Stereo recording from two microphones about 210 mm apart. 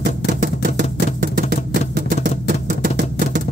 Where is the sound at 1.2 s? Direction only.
40° right (ahead or behind).